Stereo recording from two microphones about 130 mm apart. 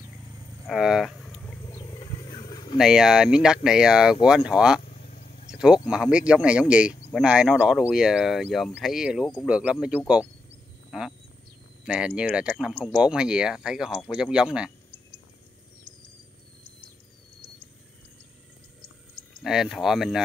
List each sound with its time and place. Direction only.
0.7 s a sound: centre (ahead or behind)
1.6 s wild animals: 20° left (ahead or behind)
2.0 s roaring cats: 35° left (ahead or behind)
2.8 s speech: 5° right (ahead or behind)
5.0 s a sound: 55° left (ahead or behind)
5.9 s speech: 5° right (ahead or behind)
10.9 s a sound: centre (ahead or behind)
11.8 s speech: 5° right (ahead or behind)
19.4 s speech: centre (ahead or behind)